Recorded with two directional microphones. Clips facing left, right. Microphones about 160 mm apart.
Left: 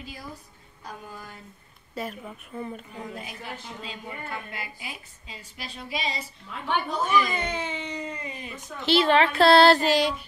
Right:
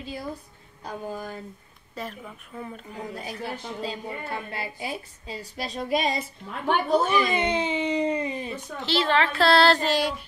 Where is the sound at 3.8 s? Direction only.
35° right (ahead or behind); by 6.2 s 50° right (ahead or behind).